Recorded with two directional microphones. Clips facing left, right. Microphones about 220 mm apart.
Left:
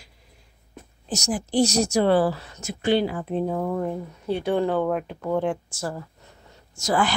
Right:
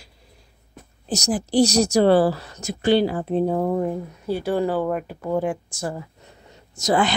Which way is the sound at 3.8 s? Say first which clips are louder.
Right 2 dB; 5° right (ahead or behind).